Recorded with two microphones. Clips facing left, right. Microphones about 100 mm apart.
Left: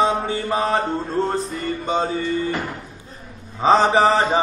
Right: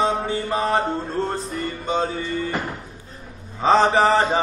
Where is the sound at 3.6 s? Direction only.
15° left (ahead or behind).